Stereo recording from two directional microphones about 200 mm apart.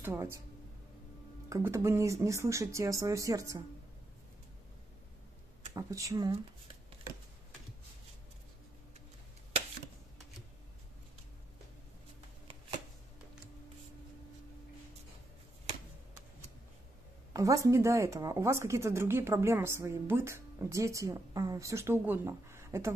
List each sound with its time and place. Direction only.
0.0 s speech: 15° right (ahead or behind)
1.5 s speech: 15° right (ahead or behind)
5.8 s speech: 15° right (ahead or behind)
17.3 s speech: 15° right (ahead or behind)